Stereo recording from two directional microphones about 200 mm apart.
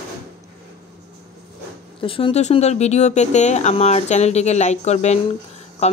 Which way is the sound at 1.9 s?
25° left (ahead or behind).